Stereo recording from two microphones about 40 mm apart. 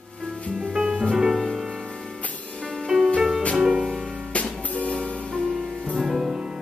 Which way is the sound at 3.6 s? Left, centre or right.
Centre.